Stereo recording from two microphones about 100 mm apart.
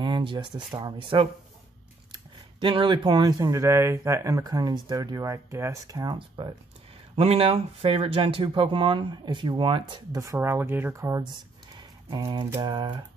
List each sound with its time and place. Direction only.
0.0 s speech: 50° right (ahead or behind)
1.1 s typing: 55° right (ahead or behind)
2.6 s speech: 55° right (ahead or behind); by 6.1 s 35° right (ahead or behind)
6.1 s speech: 55° right (ahead or behind)
7.2 s speech: 80° right; by 9.9 s 60° right (ahead or behind)
10.1 s speech: 30° right (ahead or behind)
11.7 s typing: 45° right (ahead or behind)